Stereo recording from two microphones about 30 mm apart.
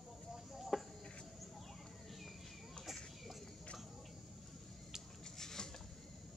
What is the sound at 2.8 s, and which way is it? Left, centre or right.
Bird, centre.